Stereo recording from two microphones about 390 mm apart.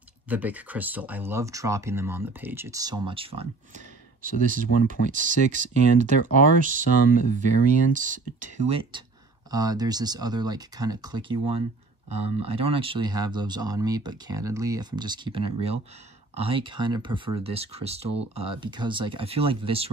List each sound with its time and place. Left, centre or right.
0.3 s speech: centre